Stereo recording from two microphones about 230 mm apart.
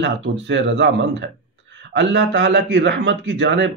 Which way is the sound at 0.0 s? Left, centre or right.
Right.